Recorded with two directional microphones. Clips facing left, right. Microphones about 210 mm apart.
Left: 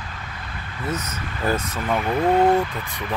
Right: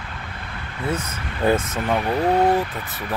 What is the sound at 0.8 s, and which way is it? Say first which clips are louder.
Speech: right 2 dB; 25° right (ahead or behind).